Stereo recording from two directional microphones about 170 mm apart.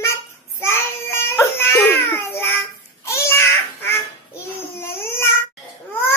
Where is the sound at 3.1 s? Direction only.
15° left (ahead or behind).